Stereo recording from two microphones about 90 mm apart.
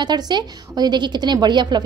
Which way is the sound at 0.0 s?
55° right (ahead or behind).